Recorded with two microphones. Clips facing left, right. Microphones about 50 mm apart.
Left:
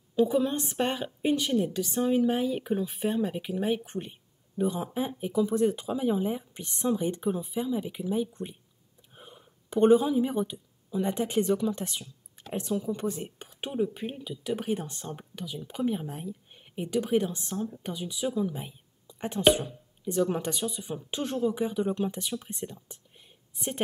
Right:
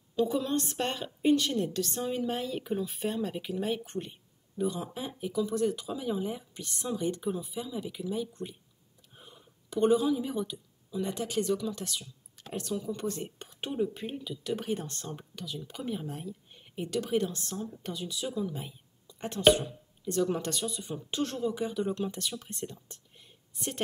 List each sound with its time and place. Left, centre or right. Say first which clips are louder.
0.1 s a woman's voice: left 4 dB; centre